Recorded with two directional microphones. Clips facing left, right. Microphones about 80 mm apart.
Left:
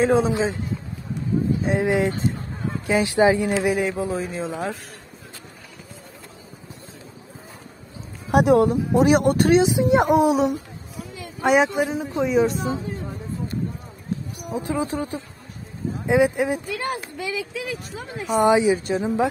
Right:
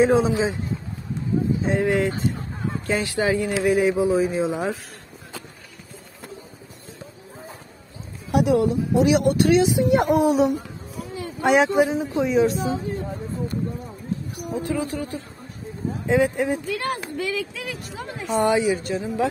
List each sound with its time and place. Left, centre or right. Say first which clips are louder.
0.0 s speech: right 1 dB; centre
1.8 s speech: even; centre
3.7 s speech: right 5 dB; centre
8.3 s speech: left 3 dB; left
9.6 s speech: left 1 dB; left
10.2 s speech: even; centre
14.5 s speech: left 1 dB; left
16.7 s speech: right 1 dB; centre
18.4 s speech: left 3 dB; left